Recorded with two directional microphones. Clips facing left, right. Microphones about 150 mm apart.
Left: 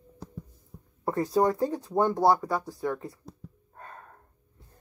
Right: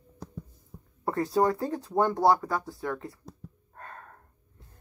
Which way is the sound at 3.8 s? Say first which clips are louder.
Right 1 dB; 5° left (ahead or behind).